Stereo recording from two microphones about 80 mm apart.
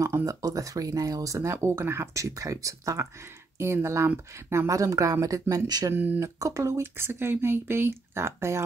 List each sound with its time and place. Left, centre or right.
0.2 s speech: right